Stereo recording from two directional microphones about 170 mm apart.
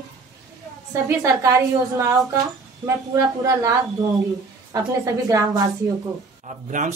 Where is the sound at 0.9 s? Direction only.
15° right (ahead or behind).